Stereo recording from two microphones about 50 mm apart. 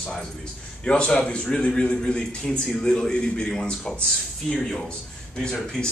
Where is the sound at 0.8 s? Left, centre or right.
Centre.